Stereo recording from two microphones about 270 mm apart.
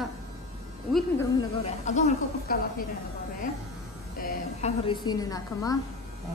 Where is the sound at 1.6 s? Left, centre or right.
Left.